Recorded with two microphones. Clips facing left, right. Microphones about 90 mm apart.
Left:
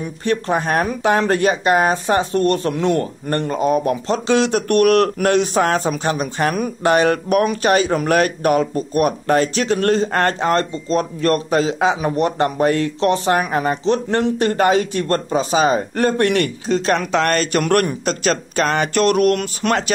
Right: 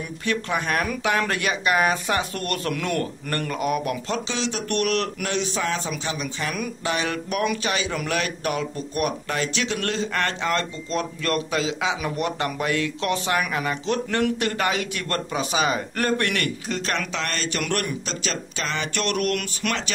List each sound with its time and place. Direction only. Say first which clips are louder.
0.0 s speech: left 6 dB; 35° left (ahead or behind)
4.3 s a man's voice: left 11 dB; 50° left (ahead or behind); by 19.8 s 35° left (ahead or behind)